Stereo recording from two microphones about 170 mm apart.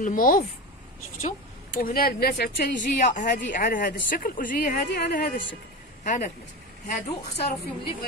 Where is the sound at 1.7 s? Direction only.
60° left (ahead or behind).